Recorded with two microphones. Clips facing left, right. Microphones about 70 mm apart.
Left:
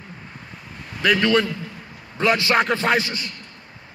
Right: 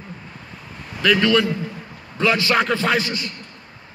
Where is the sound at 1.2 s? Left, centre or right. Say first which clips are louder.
Right 1 dB; left.